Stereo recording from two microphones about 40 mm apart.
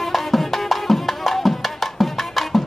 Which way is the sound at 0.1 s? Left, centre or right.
Centre.